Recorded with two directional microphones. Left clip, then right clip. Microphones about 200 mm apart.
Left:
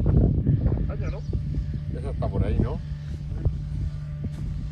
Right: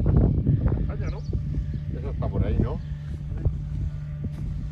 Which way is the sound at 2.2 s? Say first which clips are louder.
Left 1 dB; 35° right (ahead or behind).